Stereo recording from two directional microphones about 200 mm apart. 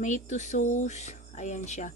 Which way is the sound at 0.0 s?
35° left (ahead or behind).